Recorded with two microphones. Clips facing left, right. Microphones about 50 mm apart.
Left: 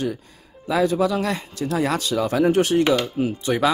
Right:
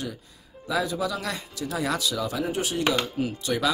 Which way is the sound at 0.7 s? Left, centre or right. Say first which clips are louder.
Left 7 dB; left.